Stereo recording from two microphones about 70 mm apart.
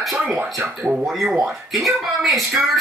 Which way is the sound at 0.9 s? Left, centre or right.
Centre.